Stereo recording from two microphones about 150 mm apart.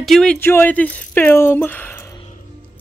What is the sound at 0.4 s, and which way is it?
Speech, 15° left (ahead or behind).